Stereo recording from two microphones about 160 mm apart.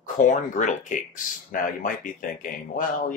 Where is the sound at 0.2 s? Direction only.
50° left (ahead or behind).